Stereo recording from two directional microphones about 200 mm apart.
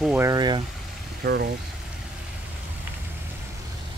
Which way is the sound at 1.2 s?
55° right (ahead or behind).